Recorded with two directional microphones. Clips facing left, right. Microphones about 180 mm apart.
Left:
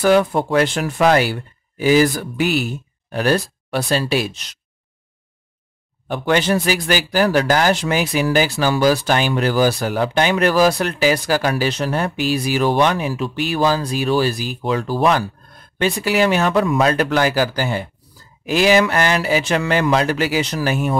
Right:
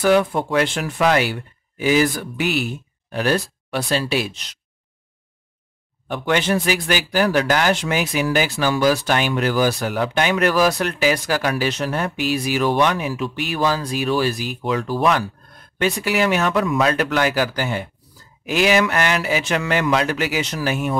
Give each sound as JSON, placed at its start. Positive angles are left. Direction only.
{"t": 0.0, "sound": "speech", "side_deg": 40}
{"t": 6.0, "sound": "speech", "side_deg": 35}